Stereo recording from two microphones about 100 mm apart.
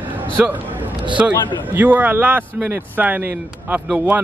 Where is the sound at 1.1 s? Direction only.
15° right (ahead or behind).